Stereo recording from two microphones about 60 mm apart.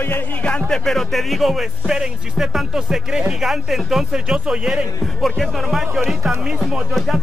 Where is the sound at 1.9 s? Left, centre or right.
Centre.